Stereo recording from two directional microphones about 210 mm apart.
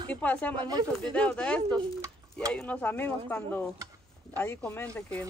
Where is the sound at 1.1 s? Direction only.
5° left (ahead or behind).